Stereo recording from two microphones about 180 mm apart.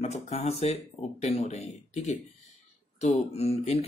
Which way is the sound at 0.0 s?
35° left (ahead or behind).